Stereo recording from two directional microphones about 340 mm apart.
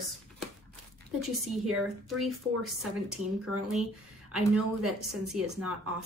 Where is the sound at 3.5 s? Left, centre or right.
Right.